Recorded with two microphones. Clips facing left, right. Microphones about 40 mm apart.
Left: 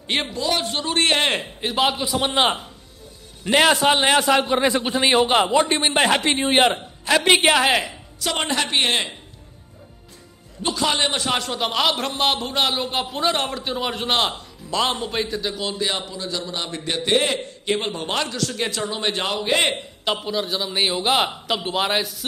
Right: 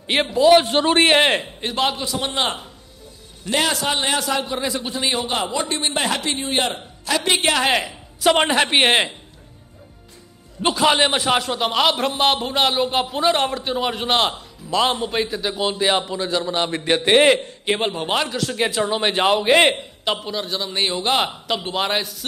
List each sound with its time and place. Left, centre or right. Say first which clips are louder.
0.0 s a man's voice: right 3 dB; centre
0.4 s a man's voice: right 10 dB; right
1.0 s a man's voice: right 2 dB; centre
1.3 s a man's voice: right 1 dB; centre
2.2 s a man's voice: left 4 dB; left
7.6 s a man's voice: even; centre
8.2 s a man's voice: right 7 dB; right
10.6 s a man's voice: right 5 dB; right
15.5 s a man's voice: right 5 dB; right
17.9 s a man's voice: right 3 dB; centre; by 19.6 s right
20.1 s a man's voice: even; centre